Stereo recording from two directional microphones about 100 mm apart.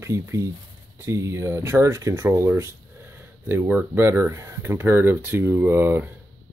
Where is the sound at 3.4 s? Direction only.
20° right (ahead or behind).